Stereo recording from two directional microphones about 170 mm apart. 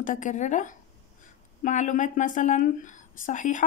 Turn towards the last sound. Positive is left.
turn(degrees=50)  # may be behind; listen again after turning